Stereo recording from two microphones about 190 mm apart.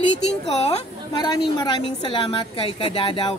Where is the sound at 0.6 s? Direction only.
35° left (ahead or behind).